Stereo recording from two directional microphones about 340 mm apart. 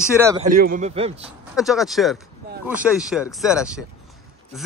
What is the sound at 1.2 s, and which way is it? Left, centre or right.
Speech, centre.